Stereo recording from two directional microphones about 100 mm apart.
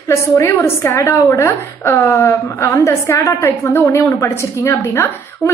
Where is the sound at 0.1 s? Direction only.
25° left (ahead or behind).